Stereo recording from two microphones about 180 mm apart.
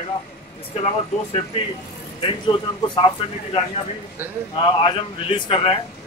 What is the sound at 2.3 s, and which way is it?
Speech, 30° left (ahead or behind).